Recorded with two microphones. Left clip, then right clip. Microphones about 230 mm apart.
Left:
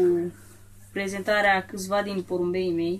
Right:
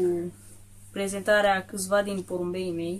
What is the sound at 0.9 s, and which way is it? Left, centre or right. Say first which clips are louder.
Speech: right 1 dB; centre.